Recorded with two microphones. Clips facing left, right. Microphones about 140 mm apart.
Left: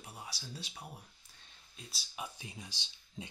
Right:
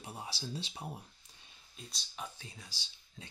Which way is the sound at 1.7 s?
5° left (ahead or behind).